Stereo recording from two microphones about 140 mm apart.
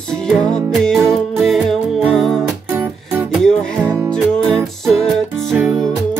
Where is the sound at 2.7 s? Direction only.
15° right (ahead or behind).